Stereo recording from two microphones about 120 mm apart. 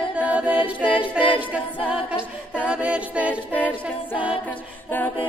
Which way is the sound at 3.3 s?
15° left (ahead or behind).